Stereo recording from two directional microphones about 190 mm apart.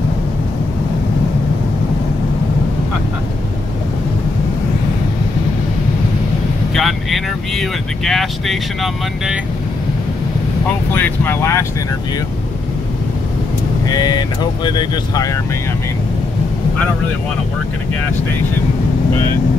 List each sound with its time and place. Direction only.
6.7 s vehicle: centre (ahead or behind)
10.9 s speech: 10° left (ahead or behind)
13.8 s speech: 20° left (ahead or behind)